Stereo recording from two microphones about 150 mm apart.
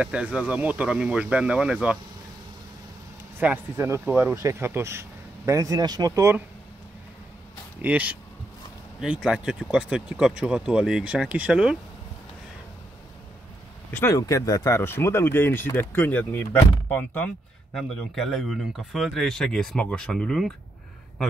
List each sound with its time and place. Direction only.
0.0 s speech: 10° right (ahead or behind)
3.3 s speech: 15° right (ahead or behind)
7.8 s speech: 10° right (ahead or behind)
13.9 s speech: 20° left (ahead or behind)